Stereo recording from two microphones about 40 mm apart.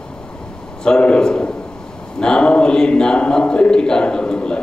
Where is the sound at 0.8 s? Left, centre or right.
Left.